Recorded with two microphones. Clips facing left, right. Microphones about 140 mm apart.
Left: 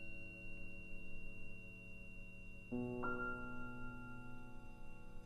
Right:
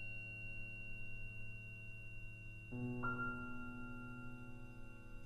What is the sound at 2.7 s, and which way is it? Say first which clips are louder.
Music: left 3 dB; 45° left (ahead or behind).